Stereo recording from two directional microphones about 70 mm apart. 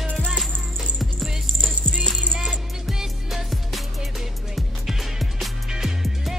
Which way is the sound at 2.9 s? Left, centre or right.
Centre.